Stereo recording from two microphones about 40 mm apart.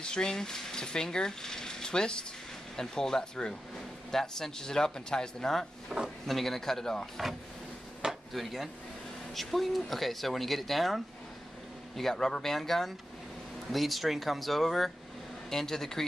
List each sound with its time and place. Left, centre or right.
0.0 s speech: left
8.3 s speech: centre
12.0 s speech: centre